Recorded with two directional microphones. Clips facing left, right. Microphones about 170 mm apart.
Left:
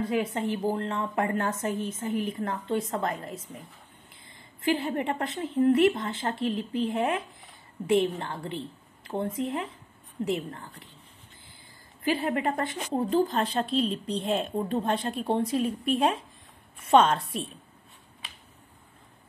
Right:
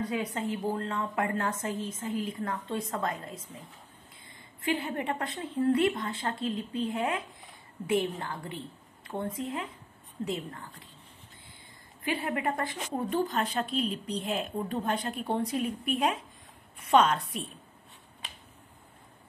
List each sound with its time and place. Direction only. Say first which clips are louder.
0.0 s a woman's voice: left 4 dB; 25° left (ahead or behind)
12.0 s a woman's voice: left 4 dB; 30° left (ahead or behind)